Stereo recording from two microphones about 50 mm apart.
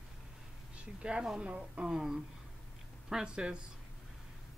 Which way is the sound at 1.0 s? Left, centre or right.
Centre.